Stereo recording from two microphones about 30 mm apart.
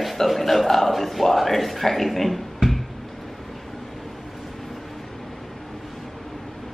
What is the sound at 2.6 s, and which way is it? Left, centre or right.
Music, right.